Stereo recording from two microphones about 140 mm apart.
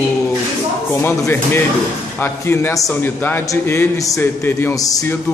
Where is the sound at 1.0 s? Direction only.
15° left (ahead or behind).